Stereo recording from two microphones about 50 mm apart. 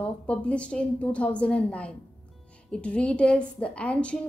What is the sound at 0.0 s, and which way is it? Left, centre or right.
A woman's voice, left.